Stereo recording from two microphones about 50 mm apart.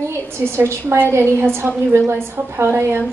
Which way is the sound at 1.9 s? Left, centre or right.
Right.